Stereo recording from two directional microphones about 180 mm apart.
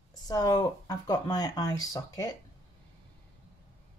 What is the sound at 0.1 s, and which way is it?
Speech, 20° left (ahead or behind).